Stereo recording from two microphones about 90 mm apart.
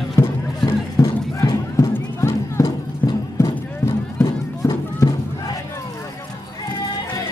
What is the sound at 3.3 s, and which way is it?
Clip-clop, 35° left (ahead or behind).